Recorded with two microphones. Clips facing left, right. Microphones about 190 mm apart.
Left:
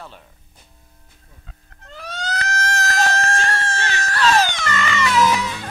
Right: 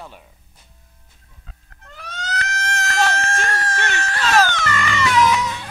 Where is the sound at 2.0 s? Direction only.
30° left (ahead or behind).